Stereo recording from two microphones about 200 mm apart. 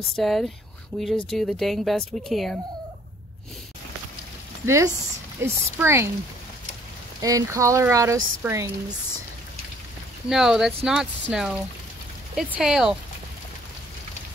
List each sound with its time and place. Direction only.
0.1 s speech: centre (ahead or behind)
4.6 s speech: 15° right (ahead or behind)
7.2 s speech: 15° right (ahead or behind)
10.3 s speech: 5° right (ahead or behind)